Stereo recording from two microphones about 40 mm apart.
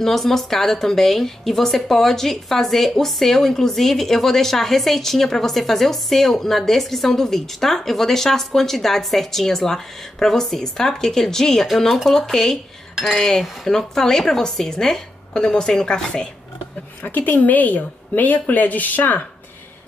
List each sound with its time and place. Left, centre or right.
0.0 s a woman's voice: centre
17.0 s a woman's voice: left